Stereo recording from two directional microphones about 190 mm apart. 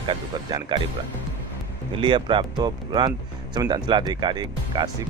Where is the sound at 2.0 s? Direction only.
25° right (ahead or behind).